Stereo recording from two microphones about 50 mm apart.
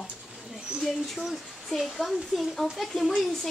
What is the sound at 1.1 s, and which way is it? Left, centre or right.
Speech, centre.